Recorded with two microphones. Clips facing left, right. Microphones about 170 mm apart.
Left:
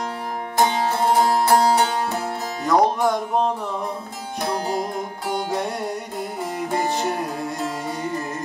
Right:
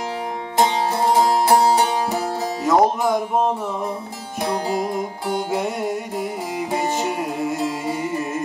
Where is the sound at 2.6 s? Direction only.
Centre (ahead or behind).